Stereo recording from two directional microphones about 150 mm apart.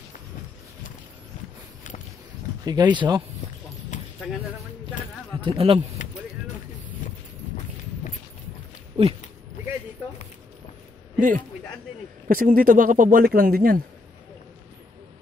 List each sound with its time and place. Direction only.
2.6 s speech: 25° right (ahead or behind)
3.9 s a sound: 50° left (ahead or behind)
5.4 s speech: 35° right (ahead or behind)
9.0 s speech: 35° right (ahead or behind)
11.1 s a man's voice: 60° right (ahead or behind)